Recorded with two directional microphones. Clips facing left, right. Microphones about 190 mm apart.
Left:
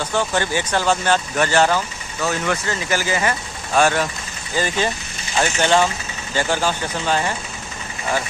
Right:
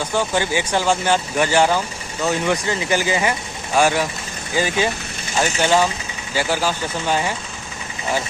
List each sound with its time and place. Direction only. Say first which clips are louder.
0.0 s speech: right 1 dB; 10° right (ahead or behind)